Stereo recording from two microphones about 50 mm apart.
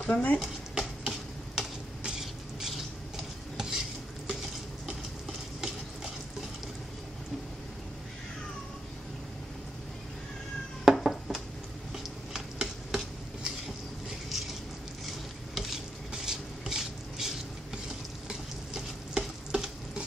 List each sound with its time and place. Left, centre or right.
0.0 s speech: left
0.4 s stir: centre
10.9 s a sound: centre
11.9 s stir: centre
15.5 s stir: centre
16.1 s a sound: centre
18.3 s stir: centre